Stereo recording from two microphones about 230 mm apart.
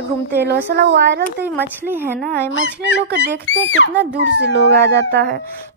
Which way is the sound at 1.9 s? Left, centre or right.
Centre.